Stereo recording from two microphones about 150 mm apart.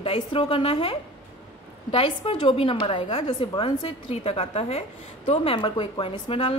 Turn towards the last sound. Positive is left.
turn(degrees=35)  # may be behind; listen again after turning